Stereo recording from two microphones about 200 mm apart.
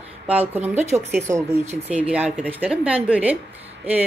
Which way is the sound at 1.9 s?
5° right (ahead or behind).